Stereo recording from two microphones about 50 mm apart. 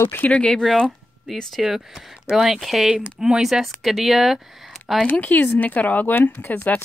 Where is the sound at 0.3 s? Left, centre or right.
Centre.